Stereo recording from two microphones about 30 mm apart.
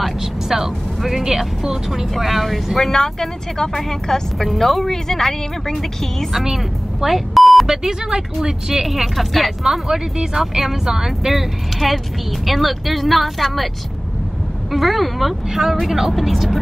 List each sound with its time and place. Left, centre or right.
0.0 s vehicle: centre
1.4 s speech: centre
2.8 s speech: centre
6.5 s speech: centre
7.6 s speech: centre
8.8 s speech: centre
9.6 s speech: centre
14.7 s speech: centre